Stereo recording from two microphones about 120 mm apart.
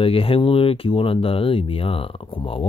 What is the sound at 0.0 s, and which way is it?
Speech, 50° left (ahead or behind).